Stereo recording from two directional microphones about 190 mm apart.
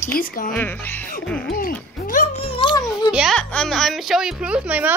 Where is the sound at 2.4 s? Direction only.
30° left (ahead or behind).